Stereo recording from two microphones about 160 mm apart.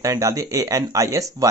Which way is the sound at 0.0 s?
20° right (ahead or behind).